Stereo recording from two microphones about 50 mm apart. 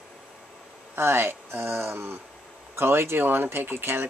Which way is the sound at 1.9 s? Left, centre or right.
Right.